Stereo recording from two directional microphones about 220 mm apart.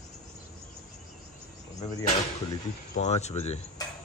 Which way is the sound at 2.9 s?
30° left (ahead or behind).